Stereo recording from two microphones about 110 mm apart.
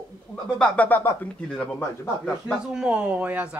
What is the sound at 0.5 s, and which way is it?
Speech, 15° left (ahead or behind).